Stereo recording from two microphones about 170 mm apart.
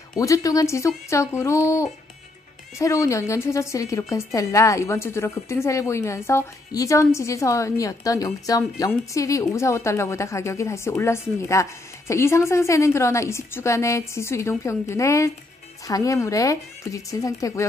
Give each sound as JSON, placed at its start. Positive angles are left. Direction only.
{"t": 0.1, "sound": "a woman's voice", "side_deg": 20}